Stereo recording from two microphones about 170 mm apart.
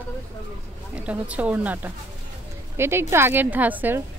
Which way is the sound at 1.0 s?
10° right (ahead or behind).